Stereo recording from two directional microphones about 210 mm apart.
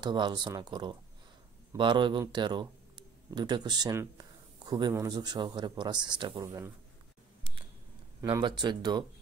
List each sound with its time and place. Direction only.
0.0 s a man's voice: 20° right (ahead or behind)
8.2 s speech: 20° right (ahead or behind)